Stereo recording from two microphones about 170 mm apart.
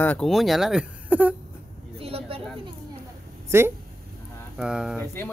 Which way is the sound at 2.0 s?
35° right (ahead or behind).